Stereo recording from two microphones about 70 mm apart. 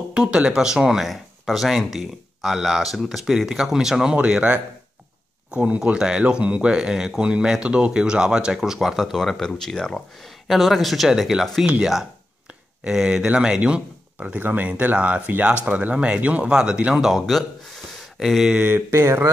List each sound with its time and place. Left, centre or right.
0.1 s speech: centre
18.5 s mantra: right
18.9 s mantra: right